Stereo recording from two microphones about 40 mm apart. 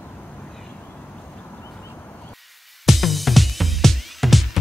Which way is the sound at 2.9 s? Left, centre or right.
Centre.